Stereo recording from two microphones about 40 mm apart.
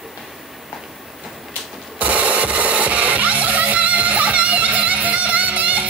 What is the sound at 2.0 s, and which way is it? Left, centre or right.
Music, right.